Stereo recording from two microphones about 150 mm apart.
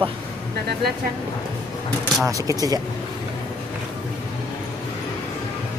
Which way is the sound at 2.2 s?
20° right (ahead or behind).